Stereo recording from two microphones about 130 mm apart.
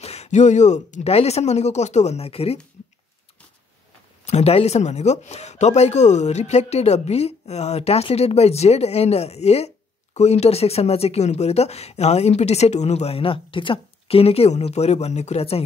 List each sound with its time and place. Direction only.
0.0 s speech: 55° left (ahead or behind)
4.3 s speech: 55° left (ahead or behind)